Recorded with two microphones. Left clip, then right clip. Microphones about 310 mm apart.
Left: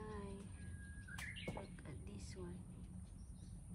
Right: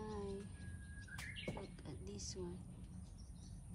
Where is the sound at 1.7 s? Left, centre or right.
Centre.